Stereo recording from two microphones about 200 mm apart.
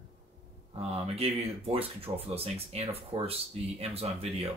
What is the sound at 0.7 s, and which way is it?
Speech, 30° right (ahead or behind).